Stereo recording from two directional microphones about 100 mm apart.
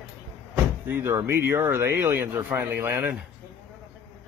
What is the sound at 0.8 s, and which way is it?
Speech, 25° right (ahead or behind).